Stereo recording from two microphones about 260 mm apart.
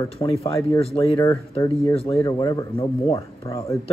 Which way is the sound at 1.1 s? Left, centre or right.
Centre.